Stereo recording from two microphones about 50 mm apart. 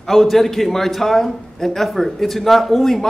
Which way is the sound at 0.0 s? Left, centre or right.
Centre.